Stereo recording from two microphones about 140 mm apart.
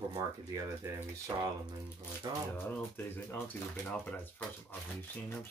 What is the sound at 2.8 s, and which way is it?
Speech, 15° left (ahead or behind).